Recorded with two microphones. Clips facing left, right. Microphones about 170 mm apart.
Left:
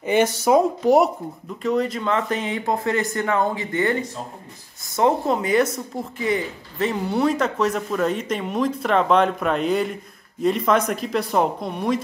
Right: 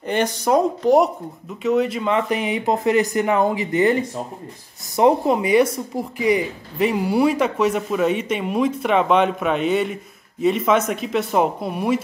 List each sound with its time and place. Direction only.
0.0 s speech: 5° left (ahead or behind)
1.6 s speech: 5° right (ahead or behind)